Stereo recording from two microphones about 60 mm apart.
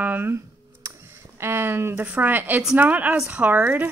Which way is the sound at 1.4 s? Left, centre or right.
Right.